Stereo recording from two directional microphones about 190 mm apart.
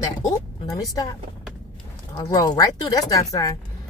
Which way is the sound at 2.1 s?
20° left (ahead or behind).